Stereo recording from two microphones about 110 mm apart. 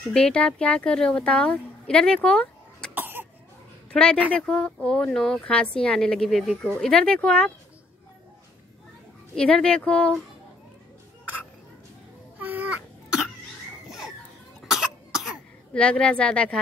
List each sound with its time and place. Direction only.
0.1 s speech: 10° left (ahead or behind)
2.9 s cough: 20° right (ahead or behind)
3.9 s speech: 10° left (ahead or behind)
9.3 s speech: 5° left (ahead or behind)
12.4 s cough: 15° right (ahead or behind)
13.8 s children playing: 5° right (ahead or behind)
14.6 s cough: centre (ahead or behind)
15.7 s speech: 10° left (ahead or behind)